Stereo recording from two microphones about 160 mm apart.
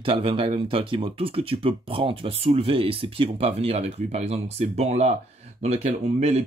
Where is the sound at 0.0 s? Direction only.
35° right (ahead or behind).